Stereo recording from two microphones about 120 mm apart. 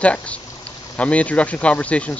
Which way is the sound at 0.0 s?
10° left (ahead or behind).